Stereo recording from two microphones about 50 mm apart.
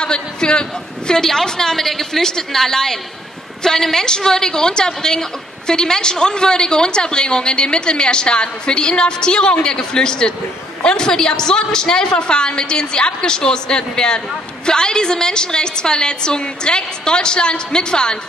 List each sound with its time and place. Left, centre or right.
0.0 s a woman's voice: centre